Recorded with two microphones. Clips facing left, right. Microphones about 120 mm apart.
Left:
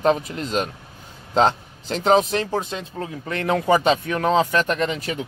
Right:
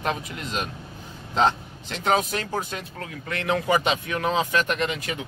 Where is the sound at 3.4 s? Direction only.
40° left (ahead or behind).